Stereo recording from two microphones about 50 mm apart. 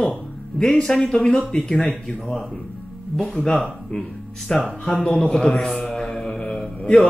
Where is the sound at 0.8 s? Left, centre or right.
Centre.